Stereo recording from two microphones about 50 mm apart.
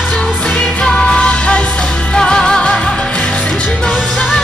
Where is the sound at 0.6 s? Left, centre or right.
Left.